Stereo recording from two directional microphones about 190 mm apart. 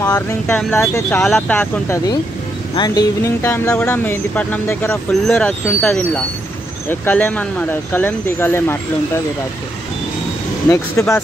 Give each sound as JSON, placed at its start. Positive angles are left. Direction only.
{"t": 0.0, "sound": "speech", "side_deg": 15}
{"t": 10.7, "sound": "speech", "side_deg": 15}